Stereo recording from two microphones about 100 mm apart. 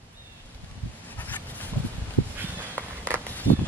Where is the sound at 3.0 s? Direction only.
15° left (ahead or behind).